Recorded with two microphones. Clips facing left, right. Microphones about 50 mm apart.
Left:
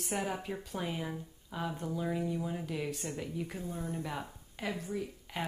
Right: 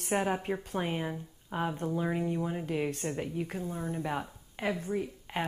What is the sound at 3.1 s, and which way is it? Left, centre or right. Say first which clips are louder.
A woman's voice: right 4 dB; right.